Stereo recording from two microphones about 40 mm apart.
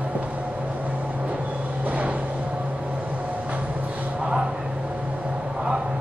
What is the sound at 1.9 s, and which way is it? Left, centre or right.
Vehicle, right.